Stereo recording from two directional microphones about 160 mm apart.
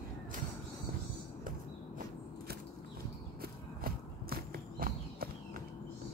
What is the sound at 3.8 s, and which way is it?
Walk, 65° right (ahead or behind).